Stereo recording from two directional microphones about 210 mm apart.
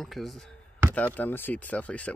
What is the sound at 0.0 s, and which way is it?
Speech, centre (ahead or behind).